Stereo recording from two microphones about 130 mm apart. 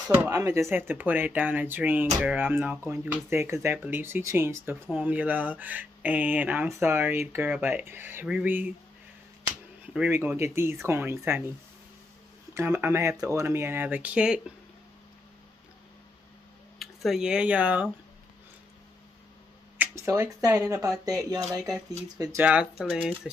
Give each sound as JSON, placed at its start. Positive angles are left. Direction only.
{"t": 0.0, "sound": "speech", "side_deg": -15}
{"t": 0.3, "sound": "speech", "side_deg": -25}
{"t": 9.9, "sound": "speech", "side_deg": -15}
{"t": 12.5, "sound": "speech", "side_deg": -20}
{"t": 16.7, "sound": "speech", "side_deg": 0}
{"t": 19.8, "sound": "speech", "side_deg": -20}
{"t": 22.4, "sound": "speech", "side_deg": -10}